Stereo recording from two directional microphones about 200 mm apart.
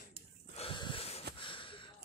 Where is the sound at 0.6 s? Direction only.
25° left (ahead or behind).